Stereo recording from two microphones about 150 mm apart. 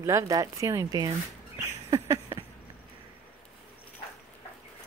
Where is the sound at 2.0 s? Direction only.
20° right (ahead or behind).